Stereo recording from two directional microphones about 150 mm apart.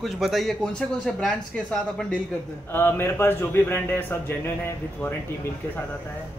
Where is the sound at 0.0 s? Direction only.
Centre (ahead or behind).